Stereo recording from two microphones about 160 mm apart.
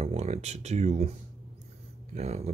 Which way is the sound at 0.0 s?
40° right (ahead or behind).